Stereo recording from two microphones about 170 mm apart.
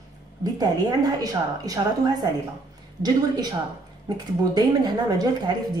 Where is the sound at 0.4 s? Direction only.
20° right (ahead or behind).